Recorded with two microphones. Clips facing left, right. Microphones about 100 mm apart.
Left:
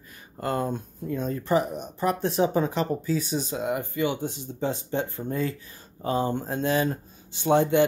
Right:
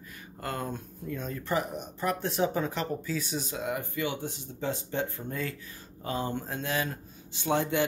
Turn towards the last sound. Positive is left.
turn(degrees=25)  # may be behind; listen again after turning